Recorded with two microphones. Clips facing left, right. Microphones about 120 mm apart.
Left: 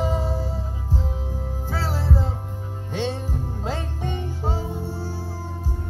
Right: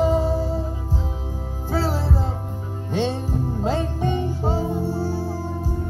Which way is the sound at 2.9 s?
15° right (ahead or behind).